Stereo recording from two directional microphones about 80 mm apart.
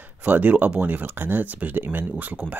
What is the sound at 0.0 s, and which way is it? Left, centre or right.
Speech, right.